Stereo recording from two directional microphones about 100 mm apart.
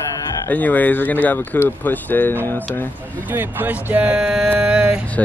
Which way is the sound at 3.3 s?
20° right (ahead or behind).